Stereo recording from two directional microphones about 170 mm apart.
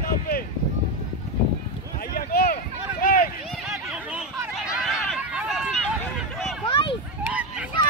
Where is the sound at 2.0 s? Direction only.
60° left (ahead or behind).